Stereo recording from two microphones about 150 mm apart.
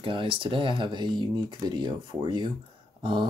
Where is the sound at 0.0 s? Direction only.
35° right (ahead or behind).